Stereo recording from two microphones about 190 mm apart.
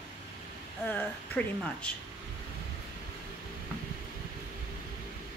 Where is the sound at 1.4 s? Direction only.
5° left (ahead or behind).